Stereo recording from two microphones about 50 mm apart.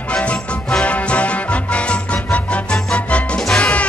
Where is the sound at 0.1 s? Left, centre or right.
Left.